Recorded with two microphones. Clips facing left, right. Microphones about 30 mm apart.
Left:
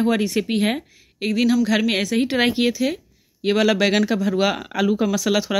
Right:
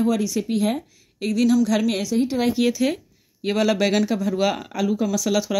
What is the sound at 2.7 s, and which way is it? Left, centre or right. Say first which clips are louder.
Speech: even; centre.